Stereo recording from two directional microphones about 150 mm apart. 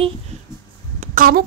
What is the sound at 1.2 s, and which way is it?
Speech, 80° right.